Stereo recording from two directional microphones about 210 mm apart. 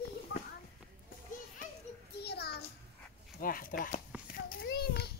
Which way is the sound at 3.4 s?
40° left (ahead or behind).